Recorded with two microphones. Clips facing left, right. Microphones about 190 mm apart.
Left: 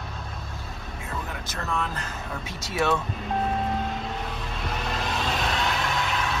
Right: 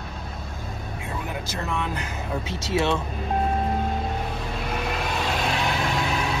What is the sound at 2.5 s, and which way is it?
Speech, 30° right (ahead or behind).